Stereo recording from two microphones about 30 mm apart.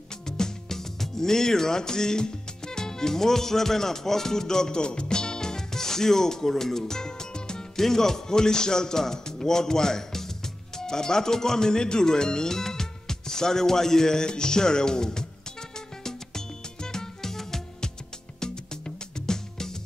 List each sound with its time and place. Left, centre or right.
0.4 s music: centre
7.7 s speech: centre
16.0 s music: centre
18.4 s music: left